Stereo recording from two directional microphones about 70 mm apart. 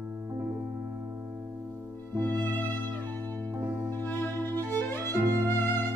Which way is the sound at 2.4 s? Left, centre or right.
Left.